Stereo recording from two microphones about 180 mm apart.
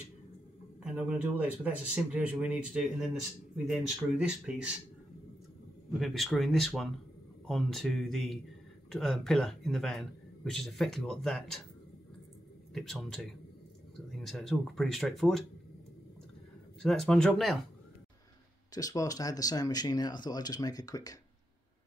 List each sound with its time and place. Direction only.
0.8 s a man's voice: 5° right (ahead or behind)
5.9 s a man's voice: centre (ahead or behind)
12.7 s a man's voice: centre (ahead or behind)
16.8 s a man's voice: 5° left (ahead or behind)
18.8 s speech: 20° left (ahead or behind)